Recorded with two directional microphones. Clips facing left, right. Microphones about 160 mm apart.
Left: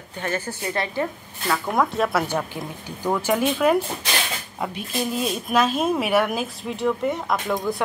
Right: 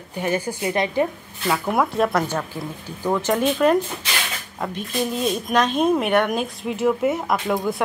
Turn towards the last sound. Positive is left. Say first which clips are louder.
# right 2 dB
turn(degrees=0)  # may be behind; listen again after turning